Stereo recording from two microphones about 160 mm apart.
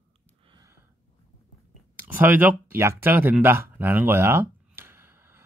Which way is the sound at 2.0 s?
10° right (ahead or behind).